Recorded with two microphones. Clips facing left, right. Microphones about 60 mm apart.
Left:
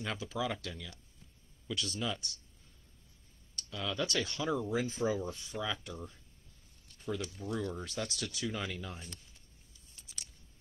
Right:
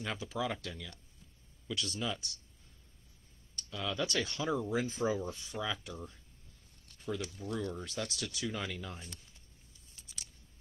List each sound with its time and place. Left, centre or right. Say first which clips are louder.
0.0 s speech: even; centre
3.5 s speech: even; centre
4.8 s speech: even; right
5.3 s speech: even; centre
7.0 s a sound: even; centre
7.4 s speech: left 1 dB; centre
10.0 s a sound: even; centre